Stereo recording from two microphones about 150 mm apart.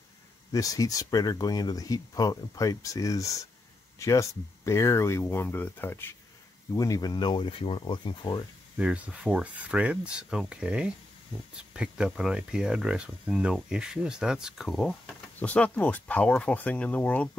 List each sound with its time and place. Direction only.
0.5 s speech: 25° left (ahead or behind)
8.7 s speech: 10° right (ahead or behind); by 17.3 s 10° left (ahead or behind)